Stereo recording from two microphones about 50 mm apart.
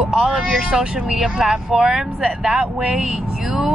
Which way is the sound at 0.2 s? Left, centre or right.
Centre.